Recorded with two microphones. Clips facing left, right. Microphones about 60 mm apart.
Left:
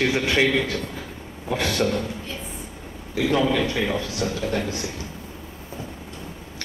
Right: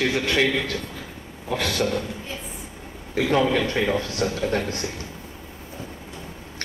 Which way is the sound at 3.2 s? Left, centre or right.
Right.